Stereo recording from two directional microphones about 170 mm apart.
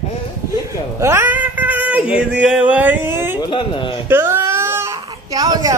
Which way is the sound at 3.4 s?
30° left (ahead or behind).